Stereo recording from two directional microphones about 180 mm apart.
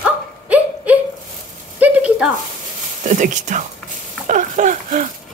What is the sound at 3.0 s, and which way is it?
Speech, 45° right (ahead or behind).